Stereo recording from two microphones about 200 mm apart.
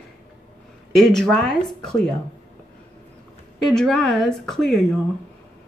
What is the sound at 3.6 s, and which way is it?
Speech, centre (ahead or behind).